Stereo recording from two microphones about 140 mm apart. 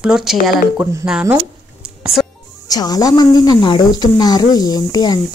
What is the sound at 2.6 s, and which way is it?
A woman's voice, 25° left (ahead or behind).